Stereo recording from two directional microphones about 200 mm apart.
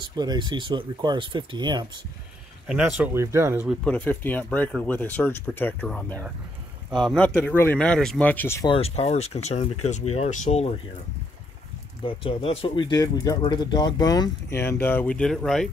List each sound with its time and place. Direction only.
0.0 s speech: 20° right (ahead or behind)
3.0 s speech: 15° right (ahead or behind)
3.8 s speech: 10° left (ahead or behind)
8.6 s speech: 30° left (ahead or behind)
12.0 s speech: 25° left (ahead or behind); by 15.7 s centre (ahead or behind)